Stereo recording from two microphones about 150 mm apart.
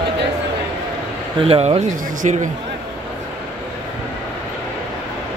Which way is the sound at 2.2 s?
50° right (ahead or behind).